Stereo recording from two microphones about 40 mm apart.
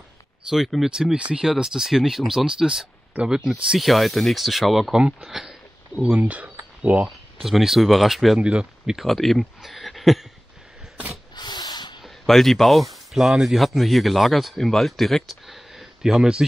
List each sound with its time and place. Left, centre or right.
0.8 s speech: centre
1.1 s speech: right
3.9 s speech: centre
4.9 s speech: right
5.3 s speech: centre
6.0 s speech: right
7.4 s speech: centre
8.4 s speech: right
9.0 s speech: centre
9.6 s a sound: centre
12.3 s speech: centre
15.4 s speech: centre